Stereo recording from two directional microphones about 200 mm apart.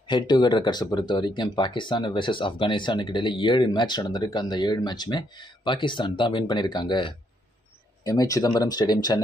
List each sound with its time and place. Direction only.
0.1 s speech: 20° left (ahead or behind)